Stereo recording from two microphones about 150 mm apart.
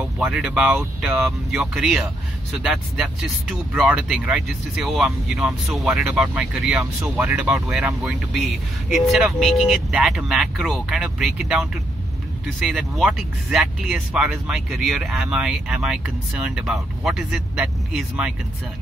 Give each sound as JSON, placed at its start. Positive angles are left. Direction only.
{"t": 0.0, "sound": "speech", "side_deg": -5}
{"t": 6.8, "sound": "speech", "side_deg": -20}
{"t": 8.1, "sound": "speech", "side_deg": -5}